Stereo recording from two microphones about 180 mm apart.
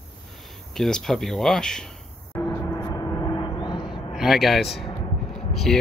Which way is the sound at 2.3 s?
15° left (ahead or behind).